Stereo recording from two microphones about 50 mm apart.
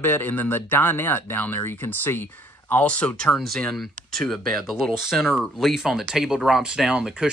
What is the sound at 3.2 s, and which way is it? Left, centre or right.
Speech, centre.